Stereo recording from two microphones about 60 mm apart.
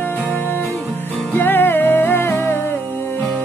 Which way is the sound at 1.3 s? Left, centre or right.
Left.